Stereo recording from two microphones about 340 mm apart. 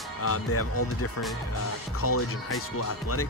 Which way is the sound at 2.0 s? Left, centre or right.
Left.